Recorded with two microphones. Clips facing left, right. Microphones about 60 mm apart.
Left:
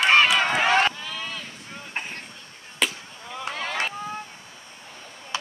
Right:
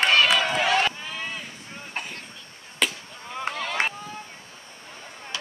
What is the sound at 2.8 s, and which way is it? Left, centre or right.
Chop, centre.